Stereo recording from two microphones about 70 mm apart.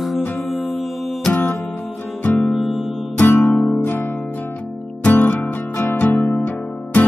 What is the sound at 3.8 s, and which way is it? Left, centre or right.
Music, left.